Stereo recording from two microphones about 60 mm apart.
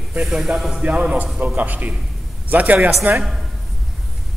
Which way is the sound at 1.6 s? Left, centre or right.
Right.